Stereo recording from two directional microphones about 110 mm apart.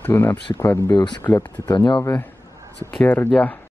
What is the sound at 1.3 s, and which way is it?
Speech, 40° left (ahead or behind).